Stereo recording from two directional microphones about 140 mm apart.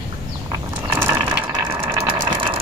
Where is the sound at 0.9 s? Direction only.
25° right (ahead or behind).